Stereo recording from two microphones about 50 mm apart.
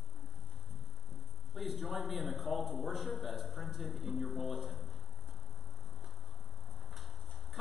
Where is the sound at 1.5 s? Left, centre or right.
Centre.